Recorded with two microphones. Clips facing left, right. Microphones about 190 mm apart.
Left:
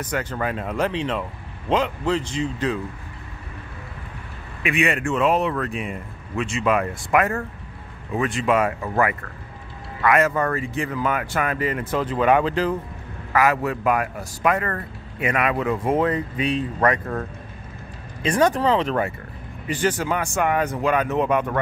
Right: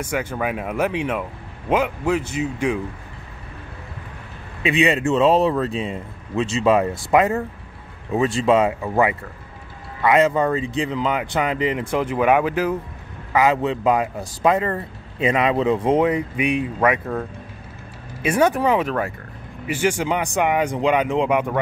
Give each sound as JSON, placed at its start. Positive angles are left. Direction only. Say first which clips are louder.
{"t": 0.0, "sound": "speech", "louder": "right 2 dB", "side_deg": -10}
{"t": 4.6, "sound": "a man's voice", "louder": "right 4 dB", "side_deg": -25}
{"t": 13.3, "sound": "a man's voice", "louder": "right 2 dB", "side_deg": -20}